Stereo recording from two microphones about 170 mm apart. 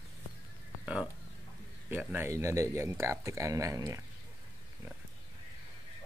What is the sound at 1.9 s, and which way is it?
Speech, 10° right (ahead or behind).